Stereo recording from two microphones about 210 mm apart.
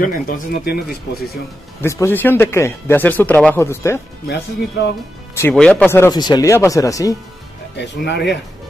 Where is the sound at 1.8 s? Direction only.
10° left (ahead or behind).